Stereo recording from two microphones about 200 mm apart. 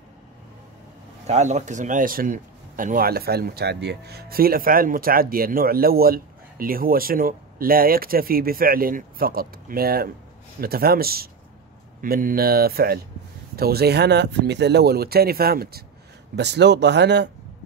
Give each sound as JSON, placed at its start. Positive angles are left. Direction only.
{"t": 1.2, "sound": "a man's voice", "side_deg": -35}